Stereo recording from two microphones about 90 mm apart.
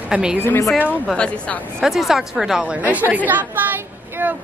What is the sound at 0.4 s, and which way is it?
Speech, 25° left (ahead or behind).